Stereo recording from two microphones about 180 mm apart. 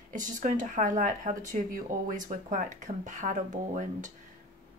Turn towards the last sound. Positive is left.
turn(degrees=-45)  # may be behind; listen again after turning